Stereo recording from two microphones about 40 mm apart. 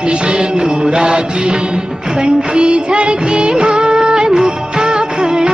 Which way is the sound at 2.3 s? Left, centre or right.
Right.